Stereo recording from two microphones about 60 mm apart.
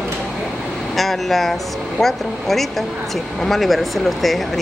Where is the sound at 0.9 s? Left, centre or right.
Centre.